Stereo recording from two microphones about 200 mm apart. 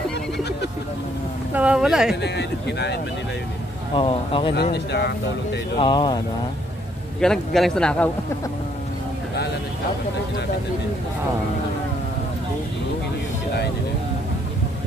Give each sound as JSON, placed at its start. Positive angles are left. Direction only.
{"t": 1.5, "sound": "a sound", "side_deg": -5}
{"t": 2.2, "sound": "speech", "side_deg": 55}
{"t": 3.9, "sound": "speech", "side_deg": 25}
{"t": 4.7, "sound": "speech", "side_deg": 55}
{"t": 5.8, "sound": "speech", "side_deg": 25}
{"t": 7.2, "sound": "speech", "side_deg": 0}